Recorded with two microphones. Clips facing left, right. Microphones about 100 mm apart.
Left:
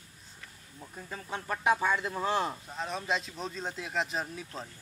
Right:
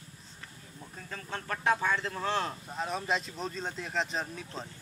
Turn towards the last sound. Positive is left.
turn(degrees=5)  # may be behind; listen again after turning